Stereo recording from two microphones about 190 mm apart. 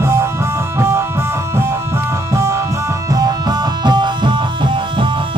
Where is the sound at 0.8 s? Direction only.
15° right (ahead or behind).